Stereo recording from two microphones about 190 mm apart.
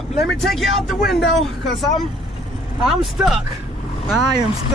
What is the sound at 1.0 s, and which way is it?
Speech, 60° left (ahead or behind).